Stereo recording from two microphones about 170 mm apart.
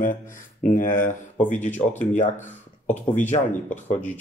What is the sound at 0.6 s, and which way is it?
Speech, 50° left (ahead or behind).